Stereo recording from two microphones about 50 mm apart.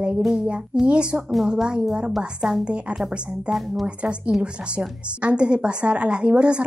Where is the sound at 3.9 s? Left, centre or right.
Right.